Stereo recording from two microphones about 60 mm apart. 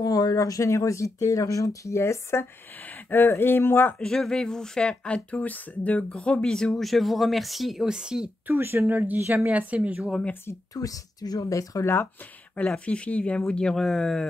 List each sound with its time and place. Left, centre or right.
0.0 s speech: left
2.0 s speech: left
4.0 s speech: centre
8.5 s a woman's voice: right
10.7 s speech: left
11.8 s speech: left
12.7 s speech: centre